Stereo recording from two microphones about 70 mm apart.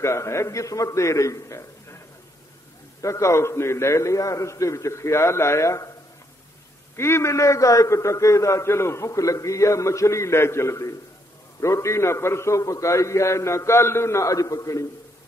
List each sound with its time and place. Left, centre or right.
0.0 s a man's voice: left
3.0 s a man's voice: left
7.0 s a man's voice: left